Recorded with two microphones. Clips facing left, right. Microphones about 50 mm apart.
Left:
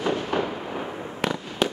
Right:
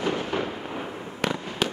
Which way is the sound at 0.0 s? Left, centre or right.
Left.